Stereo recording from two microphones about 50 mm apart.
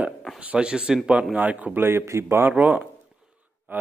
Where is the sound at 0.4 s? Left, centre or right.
Right.